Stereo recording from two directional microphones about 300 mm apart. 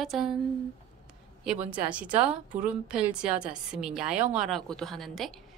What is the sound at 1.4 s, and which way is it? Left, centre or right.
A woman's voice, centre.